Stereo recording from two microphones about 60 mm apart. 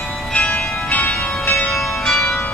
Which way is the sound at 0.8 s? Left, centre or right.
Left.